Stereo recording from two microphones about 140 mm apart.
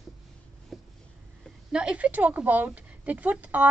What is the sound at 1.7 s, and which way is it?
A woman's voice, 5° right (ahead or behind).